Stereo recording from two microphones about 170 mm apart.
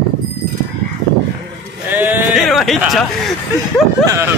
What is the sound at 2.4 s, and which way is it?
A man's voice, centre (ahead or behind).